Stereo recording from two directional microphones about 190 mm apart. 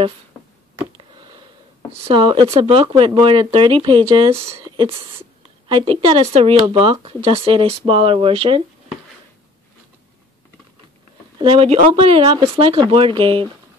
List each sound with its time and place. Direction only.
0.9 s a sound: 25° right (ahead or behind)
2.0 s speech: 30° right (ahead or behind)
11.4 s speech: 30° right (ahead or behind)